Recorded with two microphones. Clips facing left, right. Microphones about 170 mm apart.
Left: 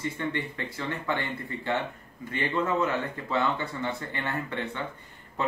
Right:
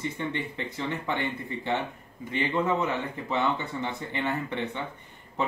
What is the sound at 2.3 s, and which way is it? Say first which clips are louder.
Speech: right 1 dB; 20° right (ahead or behind).